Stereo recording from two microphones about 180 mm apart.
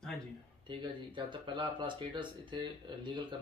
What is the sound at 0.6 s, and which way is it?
Speech, 25° right (ahead or behind).